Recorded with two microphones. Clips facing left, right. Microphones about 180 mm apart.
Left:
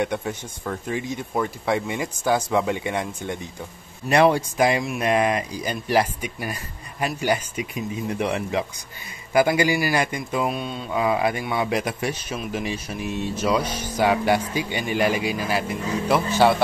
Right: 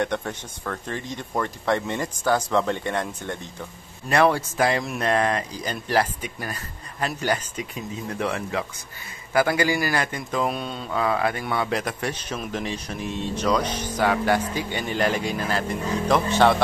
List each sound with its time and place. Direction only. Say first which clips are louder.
0.0 s a man's voice: left 1 dB; 10° left (ahead or behind)
10.9 s a man's voice: left 2 dB; 15° left (ahead or behind)